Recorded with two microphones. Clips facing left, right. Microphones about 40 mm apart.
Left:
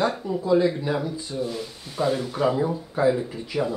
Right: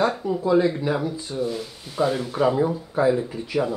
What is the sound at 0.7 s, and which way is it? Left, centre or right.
Speech, centre.